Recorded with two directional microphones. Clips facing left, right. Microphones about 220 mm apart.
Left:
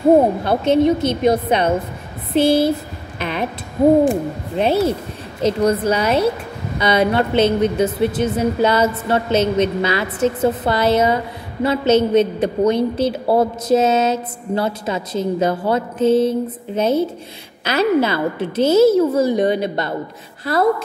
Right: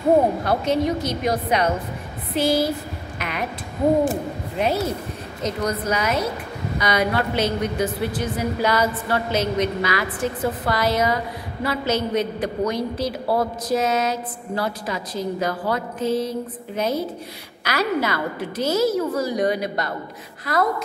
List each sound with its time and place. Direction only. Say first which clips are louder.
0.4 s a woman's voice: left 6 dB; 25° left (ahead or behind)
4.6 s a woman's voice: left 6 dB; 30° left (ahead or behind)